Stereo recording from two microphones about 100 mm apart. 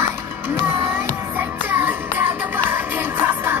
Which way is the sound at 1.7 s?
20° right (ahead or behind).